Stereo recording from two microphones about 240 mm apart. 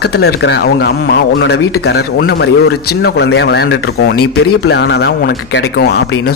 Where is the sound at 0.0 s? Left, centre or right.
Left.